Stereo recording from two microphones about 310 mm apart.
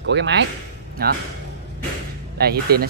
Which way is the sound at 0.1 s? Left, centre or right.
Right.